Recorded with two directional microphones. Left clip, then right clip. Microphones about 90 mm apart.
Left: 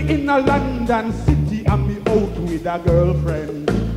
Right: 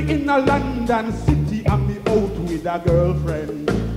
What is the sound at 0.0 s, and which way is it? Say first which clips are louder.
Music: left 1 dB; 35° left (ahead or behind).